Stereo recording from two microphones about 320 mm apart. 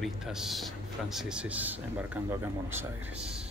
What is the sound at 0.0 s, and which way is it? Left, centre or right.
Speech, centre.